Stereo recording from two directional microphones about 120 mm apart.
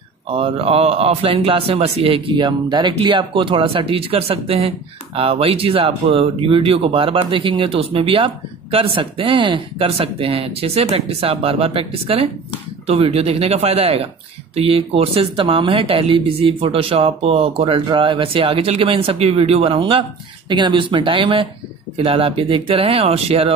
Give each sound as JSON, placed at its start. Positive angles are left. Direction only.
{"t": 0.3, "sound": "a man's voice", "side_deg": -50}